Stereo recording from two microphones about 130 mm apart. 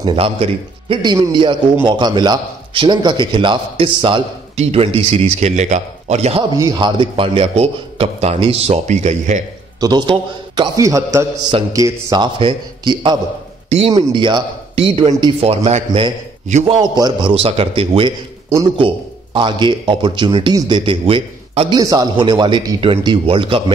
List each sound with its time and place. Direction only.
0.0 s a man's voice: 50° right (ahead or behind)
6.5 s a man's voice: 30° right (ahead or behind); by 9.4 s 65° right (ahead or behind)
9.8 s a man's voice: 35° right (ahead or behind)
12.4 s a man's voice: 40° right (ahead or behind)
13.7 s speech: 50° right (ahead or behind)
13.9 s a man's voice: 35° right (ahead or behind)
15.4 s a man's voice: 50° right (ahead or behind)
16.6 s a man's voice: 35° right (ahead or behind)
17.3 s a man's voice: 50° right (ahead or behind)
19.3 s a man's voice: 40° right (ahead or behind)
21.7 s a man's voice: 30° right (ahead or behind)
22.8 s a man's voice: 40° right (ahead or behind)